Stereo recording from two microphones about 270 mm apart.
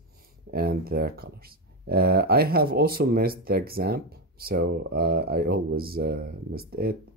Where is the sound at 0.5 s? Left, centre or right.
Right.